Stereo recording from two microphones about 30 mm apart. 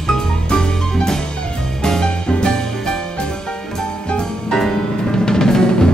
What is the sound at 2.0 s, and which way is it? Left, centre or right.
Music, left.